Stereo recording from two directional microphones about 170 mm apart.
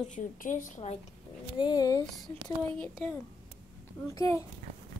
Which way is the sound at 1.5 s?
25° left (ahead or behind).